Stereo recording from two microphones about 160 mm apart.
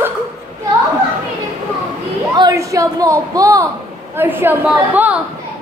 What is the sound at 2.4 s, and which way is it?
Speech, 20° right (ahead or behind).